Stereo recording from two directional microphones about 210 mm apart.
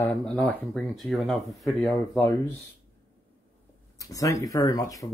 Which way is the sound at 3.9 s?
15° left (ahead or behind).